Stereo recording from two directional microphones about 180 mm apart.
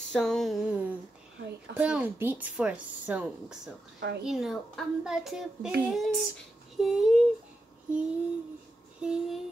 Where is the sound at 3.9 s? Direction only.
70° right (ahead or behind).